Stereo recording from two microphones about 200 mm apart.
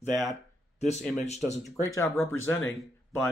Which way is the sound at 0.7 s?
35° left (ahead or behind).